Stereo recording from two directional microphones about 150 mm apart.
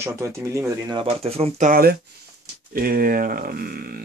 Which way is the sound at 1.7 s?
85° right.